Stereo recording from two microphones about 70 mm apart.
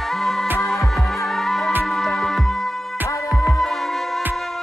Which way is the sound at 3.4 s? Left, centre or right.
Centre.